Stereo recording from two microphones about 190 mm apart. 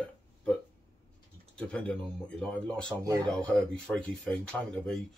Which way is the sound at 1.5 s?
5° left (ahead or behind).